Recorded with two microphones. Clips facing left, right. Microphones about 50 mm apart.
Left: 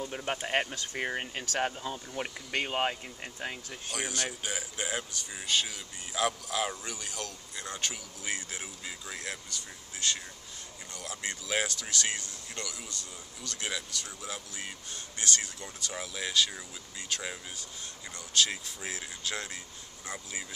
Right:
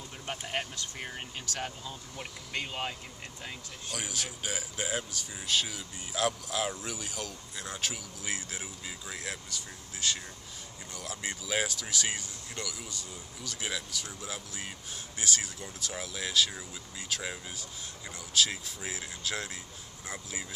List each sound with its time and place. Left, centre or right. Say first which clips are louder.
0.1 s a sound: left 5 dB; left
0.5 s speech: left 4 dB; left
3.9 s speech: left 3 dB; centre